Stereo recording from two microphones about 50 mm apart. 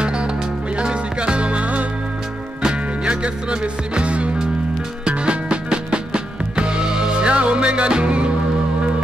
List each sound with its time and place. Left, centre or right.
0.0 s music: right
3.1 s music: right